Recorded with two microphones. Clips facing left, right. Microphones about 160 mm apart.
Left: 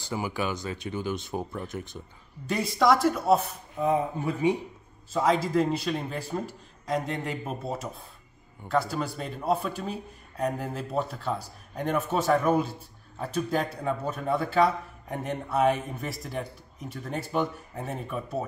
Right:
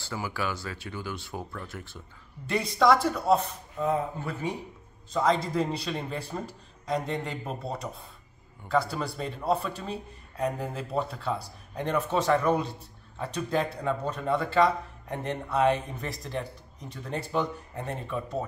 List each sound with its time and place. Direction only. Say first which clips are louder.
0.0 s speech: left 2 dB; 20° left (ahead or behind)
2.5 s speech: even; centre (ahead or behind)